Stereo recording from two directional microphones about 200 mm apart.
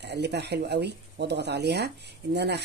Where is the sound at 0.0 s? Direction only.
60° right (ahead or behind).